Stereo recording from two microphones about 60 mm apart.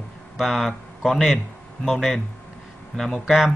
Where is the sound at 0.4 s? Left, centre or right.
Centre.